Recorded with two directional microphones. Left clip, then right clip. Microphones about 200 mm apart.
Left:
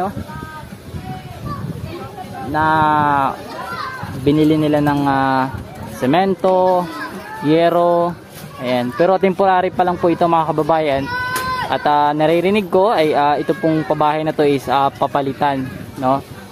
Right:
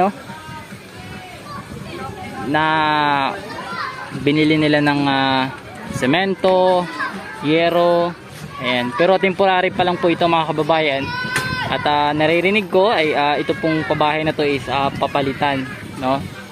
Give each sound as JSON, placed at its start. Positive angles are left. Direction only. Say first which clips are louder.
{"t": 2.5, "sound": "speech", "louder": "left 2 dB", "side_deg": -5}
{"t": 7.4, "sound": "music", "louder": "left 2 dB", "side_deg": 20}
{"t": 8.6, "sound": "speech", "louder": "left 1 dB", "side_deg": 10}
{"t": 11.1, "sound": "a sound", "louder": "left 2 dB", "side_deg": 55}
{"t": 11.7, "sound": "speech", "louder": "left 3 dB", "side_deg": 15}